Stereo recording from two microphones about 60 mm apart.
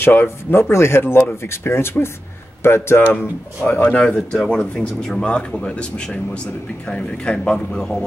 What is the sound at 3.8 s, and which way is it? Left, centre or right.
Speech, centre.